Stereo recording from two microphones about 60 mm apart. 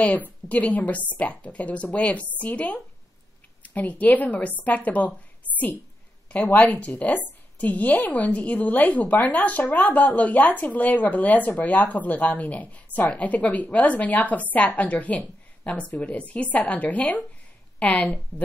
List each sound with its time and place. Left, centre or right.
0.0 s a woman's voice: left